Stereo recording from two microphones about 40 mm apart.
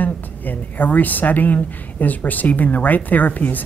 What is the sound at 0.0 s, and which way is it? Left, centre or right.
Speech, left.